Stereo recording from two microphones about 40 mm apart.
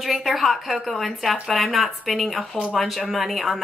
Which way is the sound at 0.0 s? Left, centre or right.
Centre.